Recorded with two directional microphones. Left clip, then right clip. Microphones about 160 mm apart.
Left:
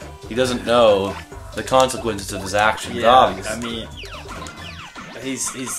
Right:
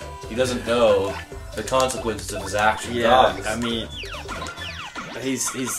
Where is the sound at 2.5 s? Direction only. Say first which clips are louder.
Left 3 dB; 45° right (ahead or behind).